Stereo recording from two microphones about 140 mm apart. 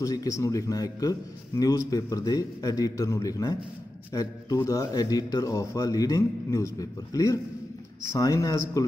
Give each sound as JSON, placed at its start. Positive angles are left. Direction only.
{"t": 0.0, "sound": "a man's voice", "side_deg": 25}